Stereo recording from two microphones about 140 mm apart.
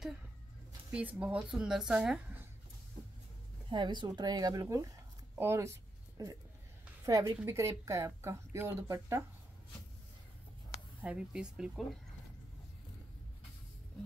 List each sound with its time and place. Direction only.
0.9 s a woman's voice: 10° right (ahead or behind)
3.7 s speech: 35° right (ahead or behind)
5.3 s a sound: 20° right (ahead or behind)
7.1 s speech: 25° right (ahead or behind)
11.0 s speech: 10° right (ahead or behind)